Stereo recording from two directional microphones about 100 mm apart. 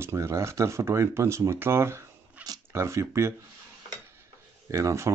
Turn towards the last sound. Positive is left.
turn(degrees=-30)  # may be behind; listen again after turning